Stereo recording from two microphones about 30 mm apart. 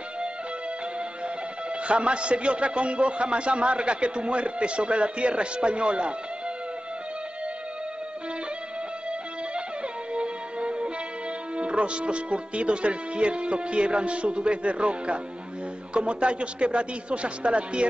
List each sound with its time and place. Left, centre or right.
1.9 s a man's voice: right
10.1 s music: right
11.5 s a man's voice: right